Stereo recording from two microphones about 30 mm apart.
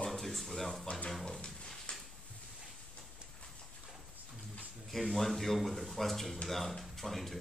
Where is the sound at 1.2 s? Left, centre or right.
Left.